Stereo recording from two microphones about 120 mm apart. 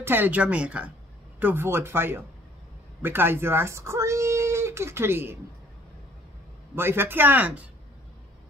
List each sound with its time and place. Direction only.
0.0 s speech: 15° right (ahead or behind)
6.7 s speech: 20° right (ahead or behind)